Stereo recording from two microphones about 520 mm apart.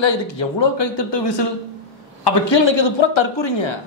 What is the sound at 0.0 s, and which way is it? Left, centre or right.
A man's voice, left.